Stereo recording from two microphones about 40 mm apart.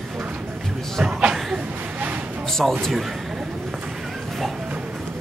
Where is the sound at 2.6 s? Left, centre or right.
Centre.